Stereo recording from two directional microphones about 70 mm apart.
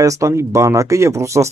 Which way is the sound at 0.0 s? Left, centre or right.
Right.